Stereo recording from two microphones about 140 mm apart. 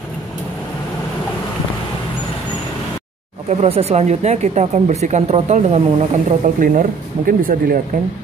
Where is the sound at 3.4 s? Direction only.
45° right (ahead or behind); by 7.8 s 90° right.